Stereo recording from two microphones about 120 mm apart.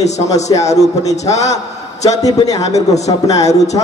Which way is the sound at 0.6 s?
30° left (ahead or behind).